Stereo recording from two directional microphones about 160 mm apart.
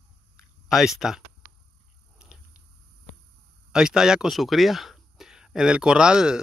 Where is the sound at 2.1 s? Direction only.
5° right (ahead or behind).